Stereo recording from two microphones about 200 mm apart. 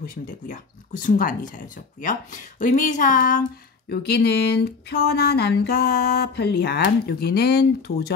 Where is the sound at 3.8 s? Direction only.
55° left (ahead or behind).